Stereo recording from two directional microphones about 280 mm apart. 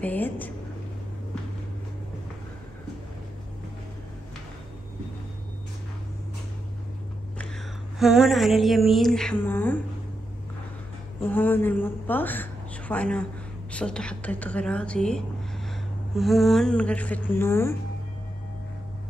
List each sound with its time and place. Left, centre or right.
0.0 s a woman's voice: centre
7.3 s a sound: centre
11.2 s a woman's voice: centre